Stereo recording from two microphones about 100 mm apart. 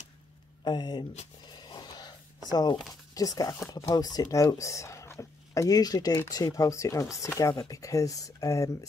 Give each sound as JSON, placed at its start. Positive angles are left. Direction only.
{"t": 0.7, "sound": "speech", "side_deg": 45}
{"t": 1.5, "sound": "a sound", "side_deg": 45}
{"t": 2.9, "sound": "speech", "side_deg": 35}